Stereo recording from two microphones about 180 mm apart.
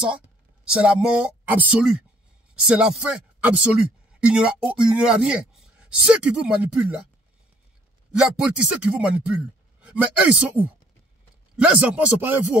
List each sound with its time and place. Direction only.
0.7 s speech: 5° right (ahead or behind)
8.1 s speech: 5° right (ahead or behind)